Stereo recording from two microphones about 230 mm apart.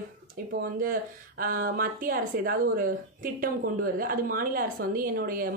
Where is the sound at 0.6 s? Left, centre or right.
Right.